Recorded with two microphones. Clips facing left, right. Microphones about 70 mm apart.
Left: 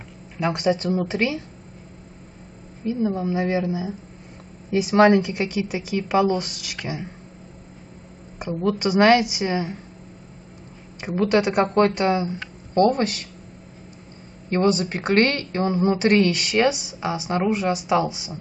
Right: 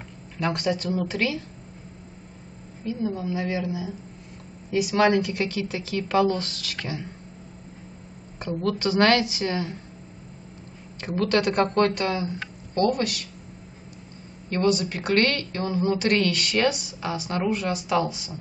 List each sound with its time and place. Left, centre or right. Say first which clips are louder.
0.4 s speech: left 4 dB; centre
2.8 s speech: left 5 dB; left
8.4 s speech: left 3 dB; centre
11.0 s speech: left 3 dB; centre
14.5 s speech: left 3 dB; left